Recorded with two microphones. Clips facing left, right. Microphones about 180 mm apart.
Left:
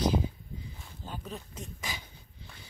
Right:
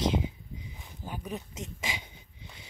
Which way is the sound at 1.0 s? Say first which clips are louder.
Right 3 dB; 15° right (ahead or behind).